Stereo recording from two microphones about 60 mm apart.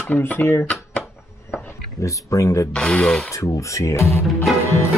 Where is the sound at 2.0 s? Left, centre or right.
Left.